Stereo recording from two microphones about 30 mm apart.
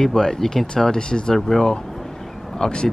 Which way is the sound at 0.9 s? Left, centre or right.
Left.